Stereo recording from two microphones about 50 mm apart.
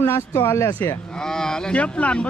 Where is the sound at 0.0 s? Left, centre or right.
Left.